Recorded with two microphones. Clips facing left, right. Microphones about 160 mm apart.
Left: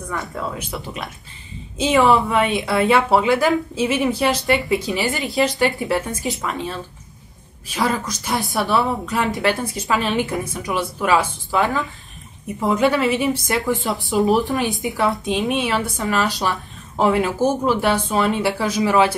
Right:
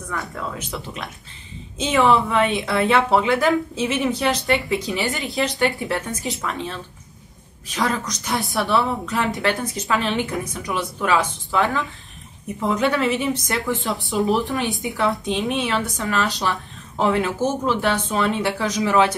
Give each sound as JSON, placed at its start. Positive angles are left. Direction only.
{"t": 0.3, "sound": "a woman's voice", "side_deg": 10}
{"t": 16.3, "sound": "a sound", "side_deg": 20}
{"t": 17.0, "sound": "speech", "side_deg": 10}